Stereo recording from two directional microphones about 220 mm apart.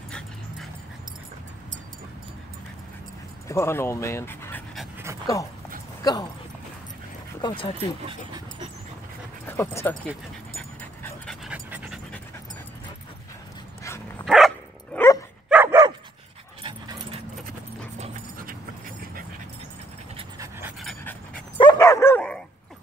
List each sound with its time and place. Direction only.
3.4 s speech: 10° left (ahead or behind)
7.4 s speech: 25° left (ahead or behind)
8.1 s speech: 25° right (ahead or behind)
9.5 s speech: 10° left (ahead or behind)
10.0 s dog: 5° left (ahead or behind)
13.8 s dog: 10° left (ahead or behind)
14.2 s dog: centre (ahead or behind)
15.5 s dog: 10° right (ahead or behind)
16.6 s dog: 20° right (ahead or behind)
17.9 s dog: 35° right (ahead or behind)
20.3 s dog: 10° right (ahead or behind)
20.8 s pant: 10° left (ahead or behind)
21.5 s dog: 20° left (ahead or behind)